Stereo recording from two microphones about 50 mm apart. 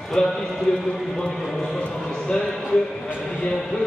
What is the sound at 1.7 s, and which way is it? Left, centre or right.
Speech, left.